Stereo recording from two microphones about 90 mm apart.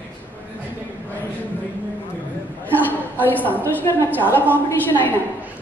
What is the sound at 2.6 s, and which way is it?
A woman's voice, 20° left (ahead or behind).